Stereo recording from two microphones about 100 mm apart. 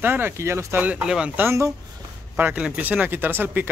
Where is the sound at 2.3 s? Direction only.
15° right (ahead or behind).